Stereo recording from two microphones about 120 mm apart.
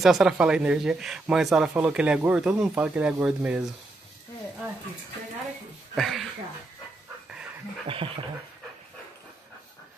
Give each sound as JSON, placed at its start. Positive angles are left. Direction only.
{"t": 0.0, "sound": "speech", "side_deg": -5}
{"t": 5.9, "sound": "a sound", "side_deg": 0}
{"t": 7.8, "sound": "speech", "side_deg": -50}